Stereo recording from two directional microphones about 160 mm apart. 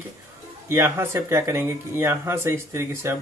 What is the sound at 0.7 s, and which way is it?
Speech, 15° right (ahead or behind).